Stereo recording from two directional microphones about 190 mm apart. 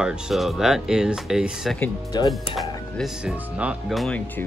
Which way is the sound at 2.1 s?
20° left (ahead or behind).